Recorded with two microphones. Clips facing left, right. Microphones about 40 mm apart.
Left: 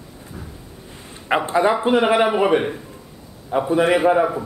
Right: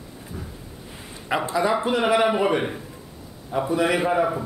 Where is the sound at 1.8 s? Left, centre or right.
Left.